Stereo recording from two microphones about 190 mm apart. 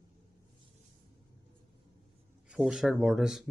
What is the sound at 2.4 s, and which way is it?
Speech, 5° right (ahead or behind).